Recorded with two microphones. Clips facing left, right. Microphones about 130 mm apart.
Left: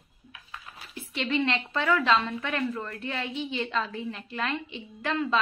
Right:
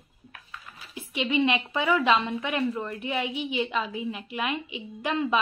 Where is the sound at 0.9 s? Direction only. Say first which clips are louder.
Right 1 dB; 10° right (ahead or behind).